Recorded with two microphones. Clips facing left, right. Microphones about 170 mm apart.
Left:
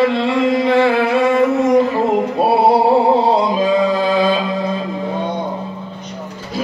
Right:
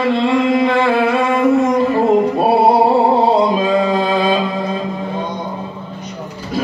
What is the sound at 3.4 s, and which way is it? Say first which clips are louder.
Music: right 1 dB; 55° right (ahead or behind).